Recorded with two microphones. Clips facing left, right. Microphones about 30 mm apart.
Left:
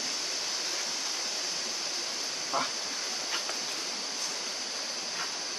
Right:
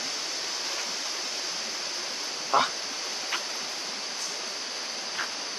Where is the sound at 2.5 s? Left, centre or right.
Right.